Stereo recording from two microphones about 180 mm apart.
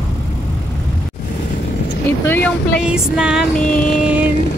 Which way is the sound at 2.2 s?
10° left (ahead or behind).